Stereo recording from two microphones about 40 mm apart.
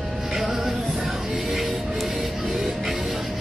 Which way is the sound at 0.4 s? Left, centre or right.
Centre.